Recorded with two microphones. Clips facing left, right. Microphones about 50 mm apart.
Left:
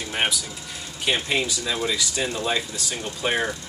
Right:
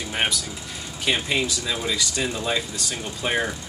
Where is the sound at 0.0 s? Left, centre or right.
Centre.